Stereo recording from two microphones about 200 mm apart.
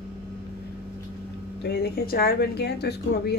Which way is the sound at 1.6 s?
55° left (ahead or behind).